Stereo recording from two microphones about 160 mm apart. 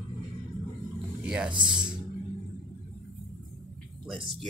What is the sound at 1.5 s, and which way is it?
Speech, 30° right (ahead or behind).